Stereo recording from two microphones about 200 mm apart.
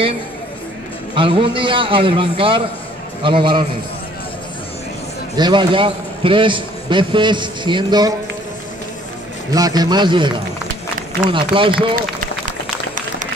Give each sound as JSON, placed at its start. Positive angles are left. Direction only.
{"t": 1.1, "sound": "a man's voice", "side_deg": -25}
{"t": 5.3, "sound": "a man's voice", "side_deg": -20}
{"t": 9.5, "sound": "a man's voice", "side_deg": -20}